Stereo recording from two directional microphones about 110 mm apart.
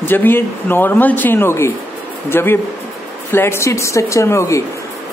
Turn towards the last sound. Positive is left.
turn(degrees=25)  # may be behind; listen again after turning